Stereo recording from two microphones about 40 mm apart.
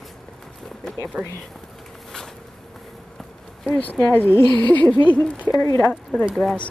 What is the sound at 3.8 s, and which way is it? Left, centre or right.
Speech, left.